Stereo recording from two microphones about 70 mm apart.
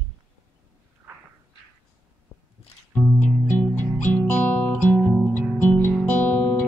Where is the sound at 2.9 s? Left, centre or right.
Left.